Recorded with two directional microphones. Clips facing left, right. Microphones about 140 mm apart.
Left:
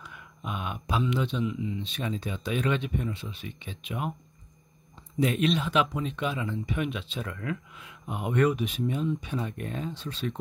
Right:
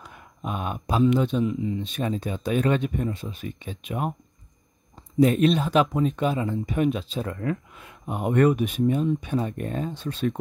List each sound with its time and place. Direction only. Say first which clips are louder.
0.0 s speech: right 5 dB; 40° right (ahead or behind)
5.2 s speech: right 6 dB; 40° right (ahead or behind)
7.8 s speech: right 8 dB; 45° right (ahead or behind)